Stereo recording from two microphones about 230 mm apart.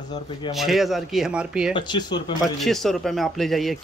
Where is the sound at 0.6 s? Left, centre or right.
Centre.